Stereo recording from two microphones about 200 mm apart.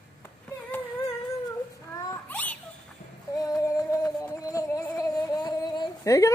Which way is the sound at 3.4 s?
15° left (ahead or behind).